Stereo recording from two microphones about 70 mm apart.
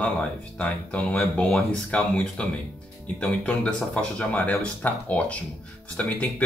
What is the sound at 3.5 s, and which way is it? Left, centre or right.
Speech, centre.